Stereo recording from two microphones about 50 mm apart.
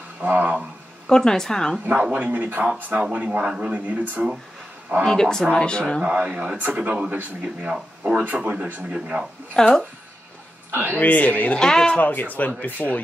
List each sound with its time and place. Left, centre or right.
0.2 s speech: right
1.0 s speech: centre
2.1 s speech: right
3.7 s speech: right
5.0 s speech: centre
6.0 s speech: right
7.6 s speech: centre
8.6 s speech: right
9.6 s speech: centre
10.7 s a man's voice: right
11.0 s speech: left
11.6 s speech: centre
12.0 s speech: left